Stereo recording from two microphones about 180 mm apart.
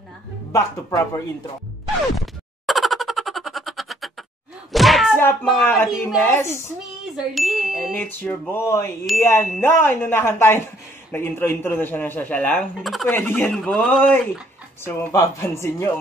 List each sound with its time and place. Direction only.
0.5 s speech: 15° left (ahead or behind)
2.1 s a sound: centre (ahead or behind)
4.7 s thump: centre (ahead or behind)
5.1 s speech: 10° left (ahead or behind)
5.7 s speech: centre (ahead or behind)
6.2 s speech: 15° left (ahead or behind)
7.2 s speech: centre (ahead or behind); by 15.9 s 15° left (ahead or behind)